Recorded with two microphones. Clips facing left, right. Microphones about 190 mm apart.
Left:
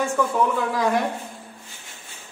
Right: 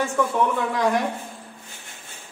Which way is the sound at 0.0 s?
Centre (ahead or behind).